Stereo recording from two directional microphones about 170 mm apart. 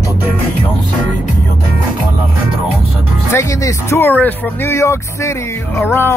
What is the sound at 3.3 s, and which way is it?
Speech, 15° left (ahead or behind).